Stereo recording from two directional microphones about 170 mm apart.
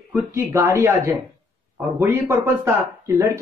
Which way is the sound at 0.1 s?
20° right (ahead or behind).